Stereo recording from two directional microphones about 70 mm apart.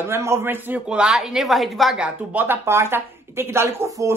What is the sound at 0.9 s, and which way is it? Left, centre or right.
Speech, centre.